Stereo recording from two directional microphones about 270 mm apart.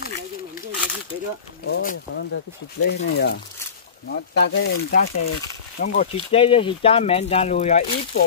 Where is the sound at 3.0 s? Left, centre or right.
Left.